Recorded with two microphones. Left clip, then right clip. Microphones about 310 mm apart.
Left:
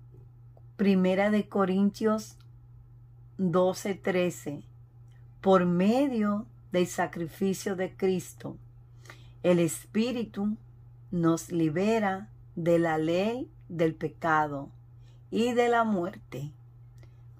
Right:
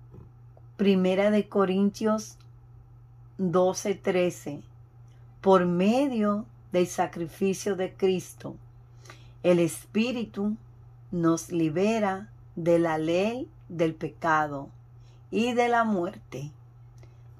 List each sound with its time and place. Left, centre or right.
0.7 s speech: centre
3.3 s speech: centre